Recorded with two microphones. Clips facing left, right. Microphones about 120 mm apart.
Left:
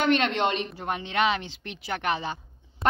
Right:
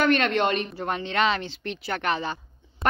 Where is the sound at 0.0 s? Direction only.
20° left (ahead or behind).